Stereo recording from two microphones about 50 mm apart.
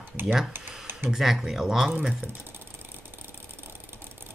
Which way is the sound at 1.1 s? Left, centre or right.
Centre.